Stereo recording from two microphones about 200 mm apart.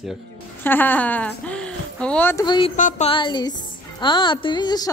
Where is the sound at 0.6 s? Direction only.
10° left (ahead or behind).